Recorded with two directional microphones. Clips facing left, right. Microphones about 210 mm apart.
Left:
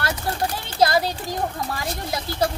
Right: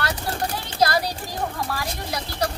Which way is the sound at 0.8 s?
25° left (ahead or behind).